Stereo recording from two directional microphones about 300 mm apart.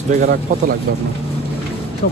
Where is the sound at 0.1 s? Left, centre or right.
Right.